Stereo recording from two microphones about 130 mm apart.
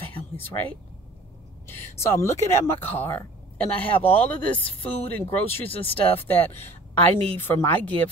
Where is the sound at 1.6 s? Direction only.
20° left (ahead or behind).